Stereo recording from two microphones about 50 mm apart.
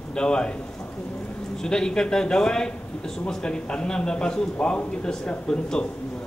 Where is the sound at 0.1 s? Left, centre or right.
Centre.